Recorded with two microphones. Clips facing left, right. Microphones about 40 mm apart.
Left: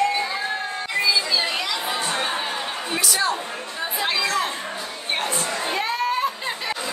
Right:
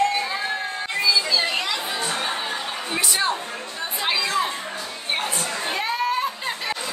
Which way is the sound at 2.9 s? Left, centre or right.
Right.